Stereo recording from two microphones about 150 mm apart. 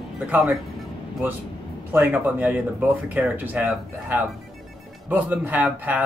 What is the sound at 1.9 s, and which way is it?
Speech, 10° right (ahead or behind).